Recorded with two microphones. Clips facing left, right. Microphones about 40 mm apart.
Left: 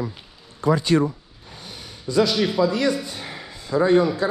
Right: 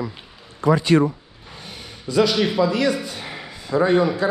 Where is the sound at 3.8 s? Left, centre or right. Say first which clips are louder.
Left 1 dB; right.